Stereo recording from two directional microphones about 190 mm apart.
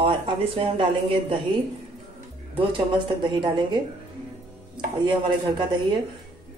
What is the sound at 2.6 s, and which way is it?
Speech, 25° right (ahead or behind).